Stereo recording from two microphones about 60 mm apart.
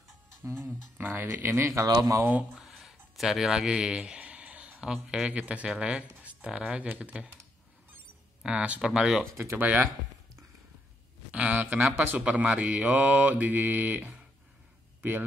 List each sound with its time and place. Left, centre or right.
0.4 s music: right
0.7 s speech: right
1.9 s speech: right
2.7 s a sound: centre; by 4.6 s right
4.6 s speech: centre
5.3 s mantra: right
8.4 s mantra: centre
8.9 s speech: centre
9.6 s mantra: right
11.3 s a sound: right
12.2 s mantra: right
15.0 s speech: right